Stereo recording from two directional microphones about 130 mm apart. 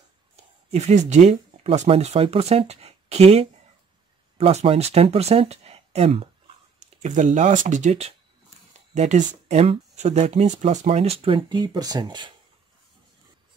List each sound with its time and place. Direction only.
0.7 s speech: 60° right (ahead or behind)
6.8 s speech: 70° right (ahead or behind); by 12.3 s 35° right (ahead or behind)